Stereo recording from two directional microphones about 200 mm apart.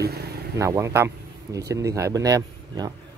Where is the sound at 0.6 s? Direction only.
15° right (ahead or behind).